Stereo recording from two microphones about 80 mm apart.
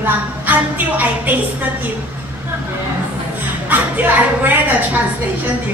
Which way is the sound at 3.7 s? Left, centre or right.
Right.